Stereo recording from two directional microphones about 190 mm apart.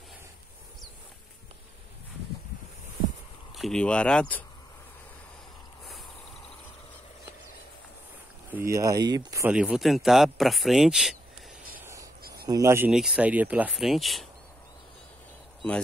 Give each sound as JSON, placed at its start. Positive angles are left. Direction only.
{"t": 3.5, "sound": "speech", "side_deg": 5}
{"t": 8.5, "sound": "speech", "side_deg": -10}
{"t": 9.5, "sound": "speech", "side_deg": -5}
{"t": 11.7, "sound": "a sound", "side_deg": -15}
{"t": 12.2, "sound": "a sound", "side_deg": -55}
{"t": 12.4, "sound": "speech", "side_deg": -15}